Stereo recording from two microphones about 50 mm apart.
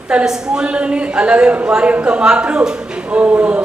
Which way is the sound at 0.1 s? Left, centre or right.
Centre.